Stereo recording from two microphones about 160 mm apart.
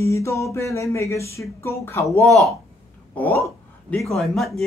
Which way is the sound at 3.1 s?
10° left (ahead or behind).